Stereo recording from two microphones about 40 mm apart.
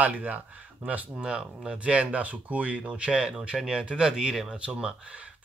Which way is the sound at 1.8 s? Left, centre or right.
Right.